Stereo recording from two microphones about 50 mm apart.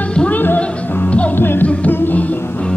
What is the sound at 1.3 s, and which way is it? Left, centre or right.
Music, left.